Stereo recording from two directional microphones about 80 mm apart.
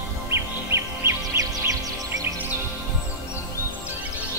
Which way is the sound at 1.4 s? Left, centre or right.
Right.